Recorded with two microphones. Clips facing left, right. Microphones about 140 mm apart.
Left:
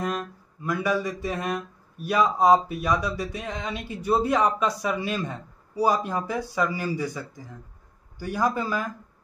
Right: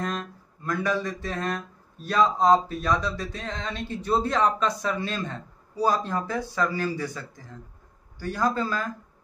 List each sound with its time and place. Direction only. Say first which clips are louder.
0.0 s speech: left 2 dB; 10° left (ahead or behind)